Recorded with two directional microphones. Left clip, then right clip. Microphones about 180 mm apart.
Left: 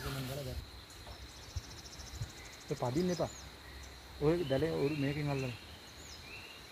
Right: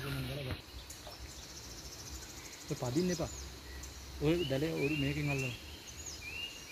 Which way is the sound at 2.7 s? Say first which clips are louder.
Left 1 dB; 20° left (ahead or behind).